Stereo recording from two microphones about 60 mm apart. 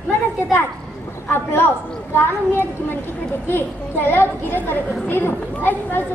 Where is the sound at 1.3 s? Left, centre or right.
Left.